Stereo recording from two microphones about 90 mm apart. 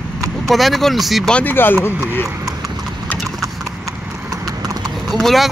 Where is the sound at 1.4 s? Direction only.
20° left (ahead or behind).